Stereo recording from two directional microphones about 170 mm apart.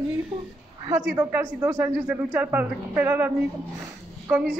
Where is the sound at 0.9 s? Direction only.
10° right (ahead or behind).